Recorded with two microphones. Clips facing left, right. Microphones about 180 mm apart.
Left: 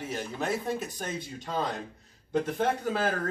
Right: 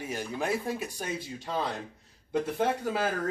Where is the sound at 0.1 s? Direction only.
10° right (ahead or behind).